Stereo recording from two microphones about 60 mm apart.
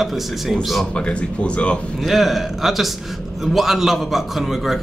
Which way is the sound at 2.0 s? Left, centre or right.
Centre.